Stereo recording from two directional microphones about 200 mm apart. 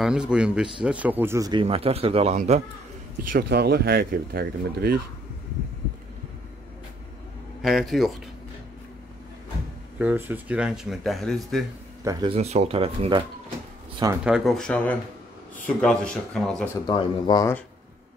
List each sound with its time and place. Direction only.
0.0 s speech: 5° right (ahead or behind); by 2.6 s 35° right (ahead or behind)
3.3 s speech: 55° right (ahead or behind)
7.6 s speech: centre (ahead or behind)
9.9 s speech: 10° right (ahead or behind)
12.0 s speech: 15° right (ahead or behind)
12.3 s speech: 30° right (ahead or behind)
14.2 s speech: centre (ahead or behind)
16.8 s speech: 25° left (ahead or behind)